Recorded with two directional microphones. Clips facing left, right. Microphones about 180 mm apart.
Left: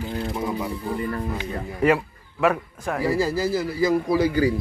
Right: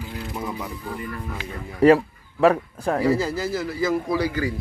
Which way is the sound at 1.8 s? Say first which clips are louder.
Right 6 dB; 35° right (ahead or behind).